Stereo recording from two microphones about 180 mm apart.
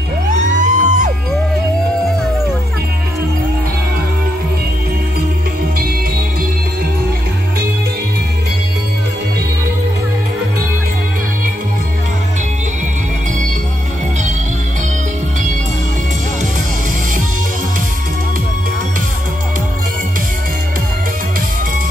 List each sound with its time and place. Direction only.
0.3 s music: 45° right (ahead or behind)